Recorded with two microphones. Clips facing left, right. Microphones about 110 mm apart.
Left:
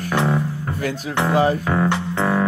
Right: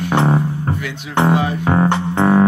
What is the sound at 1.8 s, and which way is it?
Music, 20° right (ahead or behind).